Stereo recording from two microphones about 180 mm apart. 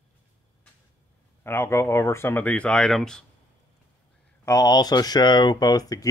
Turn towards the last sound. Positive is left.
turn(degrees=20)  # may be behind; listen again after turning